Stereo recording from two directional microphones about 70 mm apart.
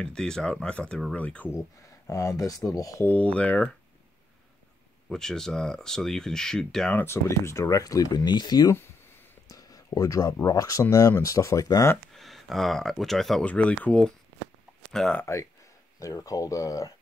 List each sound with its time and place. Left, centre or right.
0.0 s speech: centre
2.0 s speech: left
3.1 s speech: centre
5.1 s speech: centre
7.1 s speech: left
9.5 s speech: left
12.1 s speech: centre
13.4 s speech: centre
16.0 s speech: left